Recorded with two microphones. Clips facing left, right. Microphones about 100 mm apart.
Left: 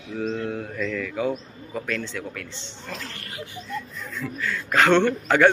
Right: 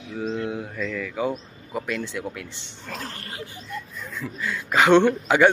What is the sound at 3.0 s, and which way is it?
Speech, 30° right (ahead or behind).